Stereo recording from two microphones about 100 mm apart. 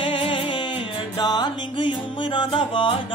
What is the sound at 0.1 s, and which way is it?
Music, 65° left (ahead or behind).